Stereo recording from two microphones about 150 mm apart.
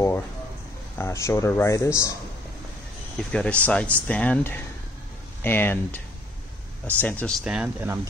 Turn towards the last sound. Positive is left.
turn(degrees=-5)  # may be behind; listen again after turning